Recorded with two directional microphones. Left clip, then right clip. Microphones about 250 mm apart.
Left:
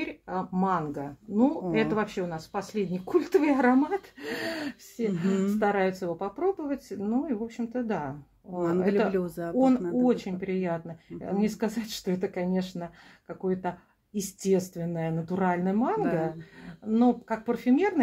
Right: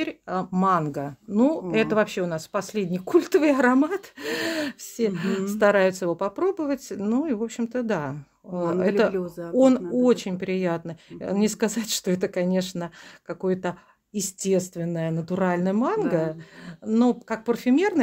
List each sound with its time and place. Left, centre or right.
0.0 s speech: right
9.1 s speech: centre
9.6 s speech: right